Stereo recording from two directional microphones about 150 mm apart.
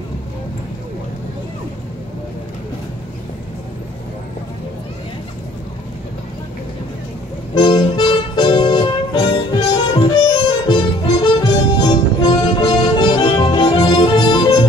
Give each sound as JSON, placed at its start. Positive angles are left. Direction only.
{"t": 7.5, "sound": "music", "side_deg": 30}